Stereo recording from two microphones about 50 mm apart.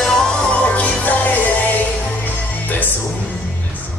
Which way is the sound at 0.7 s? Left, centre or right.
Left.